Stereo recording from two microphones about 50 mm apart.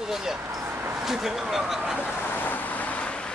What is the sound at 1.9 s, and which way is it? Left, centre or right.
Vehicle, left.